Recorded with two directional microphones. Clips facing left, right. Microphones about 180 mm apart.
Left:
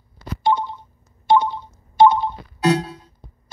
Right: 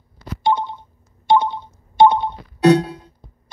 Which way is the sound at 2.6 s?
60° right (ahead or behind).